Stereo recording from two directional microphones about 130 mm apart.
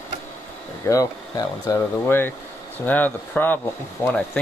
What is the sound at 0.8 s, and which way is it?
Speech, 25° left (ahead or behind).